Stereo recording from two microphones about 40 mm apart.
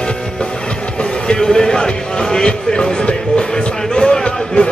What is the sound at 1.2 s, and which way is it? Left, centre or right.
Music, centre.